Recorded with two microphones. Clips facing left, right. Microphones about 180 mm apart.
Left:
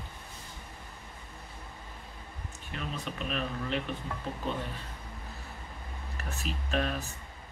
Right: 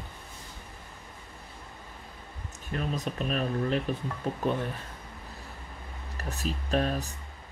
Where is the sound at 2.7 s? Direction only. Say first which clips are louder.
Right 6 dB; 40° right (ahead or behind).